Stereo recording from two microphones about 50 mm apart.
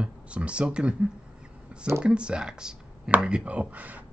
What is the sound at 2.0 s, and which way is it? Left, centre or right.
Speech, right.